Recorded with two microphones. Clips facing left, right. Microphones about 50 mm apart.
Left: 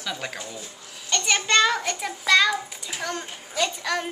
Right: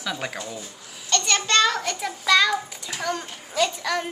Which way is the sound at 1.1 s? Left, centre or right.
Centre.